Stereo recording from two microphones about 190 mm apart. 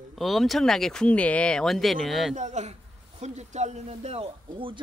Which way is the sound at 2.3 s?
40° right (ahead or behind).